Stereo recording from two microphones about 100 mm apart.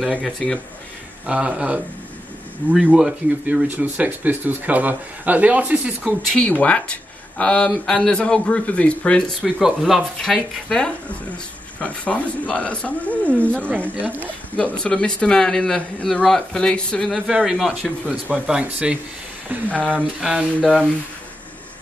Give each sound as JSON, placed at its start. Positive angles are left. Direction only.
{"t": 0.2, "sound": "speech", "side_deg": 0}
{"t": 1.2, "sound": "speech", "side_deg": -10}
{"t": 3.6, "sound": "speech", "side_deg": -20}
{"t": 6.3, "sound": "speech", "side_deg": 15}
{"t": 14.8, "sound": "speech", "side_deg": 10}
{"t": 17.5, "sound": "speech", "side_deg": -5}
{"t": 19.7, "sound": "speech", "side_deg": 10}
{"t": 20.0, "sound": "speech", "side_deg": -5}
{"t": 20.6, "sound": "speech", "side_deg": 10}